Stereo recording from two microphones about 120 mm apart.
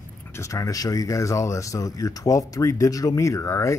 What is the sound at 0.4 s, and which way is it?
A man's voice, 25° left (ahead or behind).